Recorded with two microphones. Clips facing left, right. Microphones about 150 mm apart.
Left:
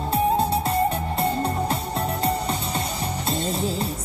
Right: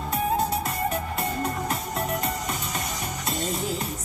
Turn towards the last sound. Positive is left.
turn(degrees=30)  # may be behind; listen again after turning